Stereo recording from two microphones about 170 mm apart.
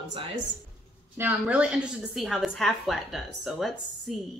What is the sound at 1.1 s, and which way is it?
Speech, 10° right (ahead or behind).